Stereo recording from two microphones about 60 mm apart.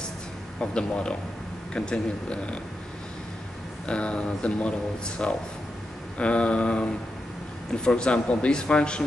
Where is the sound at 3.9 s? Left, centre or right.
Centre.